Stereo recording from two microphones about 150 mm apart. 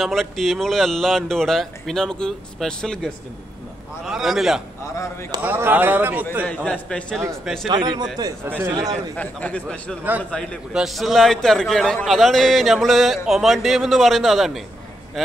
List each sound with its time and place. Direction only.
0.0 s a man's voice: centre (ahead or behind)
4.8 s speech: 20° left (ahead or behind)
5.4 s speech: 15° right (ahead or behind)
6.4 s a man's voice: 10° left (ahead or behind)
7.6 s a man's voice: 30° right (ahead or behind)
8.5 s speech: 15° right (ahead or behind)
8.7 s a man's voice: 25° right (ahead or behind)
9.1 s a man's voice: 10° left (ahead or behind)